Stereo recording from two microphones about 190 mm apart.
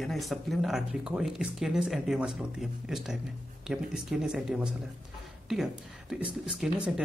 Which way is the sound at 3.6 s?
5° right (ahead or behind).